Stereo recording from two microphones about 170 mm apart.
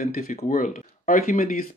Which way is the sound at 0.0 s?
60° left (ahead or behind).